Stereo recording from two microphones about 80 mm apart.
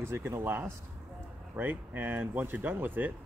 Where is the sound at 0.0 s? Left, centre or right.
Right.